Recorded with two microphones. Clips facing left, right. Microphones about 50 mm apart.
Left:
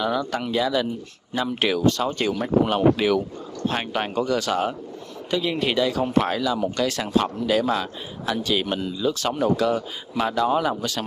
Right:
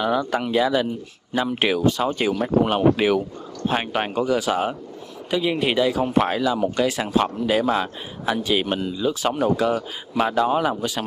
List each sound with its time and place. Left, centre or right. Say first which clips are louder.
0.0 s speech: right 2 dB; centre